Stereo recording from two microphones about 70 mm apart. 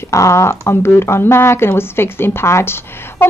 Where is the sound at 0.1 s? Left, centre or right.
Left.